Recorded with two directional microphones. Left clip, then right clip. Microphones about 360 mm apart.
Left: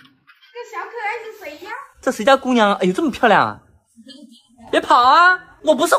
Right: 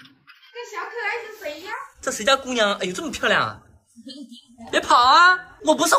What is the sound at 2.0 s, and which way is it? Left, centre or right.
A woman's voice, centre.